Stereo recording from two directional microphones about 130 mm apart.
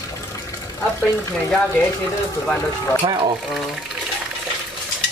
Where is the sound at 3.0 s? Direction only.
40° right (ahead or behind).